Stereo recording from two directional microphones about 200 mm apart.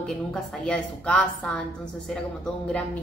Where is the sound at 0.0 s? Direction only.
5° left (ahead or behind).